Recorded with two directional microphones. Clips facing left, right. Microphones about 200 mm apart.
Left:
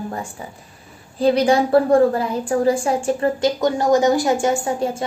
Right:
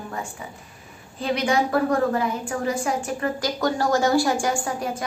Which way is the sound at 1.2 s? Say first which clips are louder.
Left 7 dB; 35° left (ahead or behind).